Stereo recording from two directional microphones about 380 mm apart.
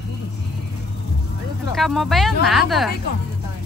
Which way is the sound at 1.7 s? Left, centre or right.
Centre.